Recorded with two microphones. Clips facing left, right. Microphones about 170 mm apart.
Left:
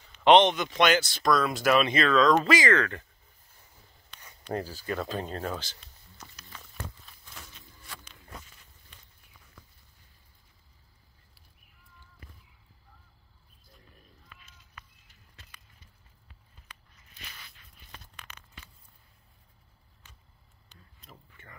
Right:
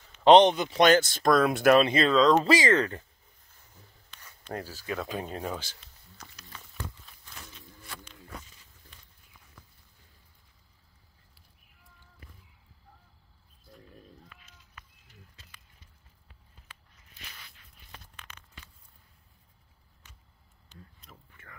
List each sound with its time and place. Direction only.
0.2 s speech: 35° right (ahead or behind)
0.8 s speech: 45° right (ahead or behind)
1.8 s speech: 30° right (ahead or behind)
4.1 s a sound: 10° left (ahead or behind)
4.6 s speech: centre (ahead or behind)
5.0 s speech: 10° right (ahead or behind)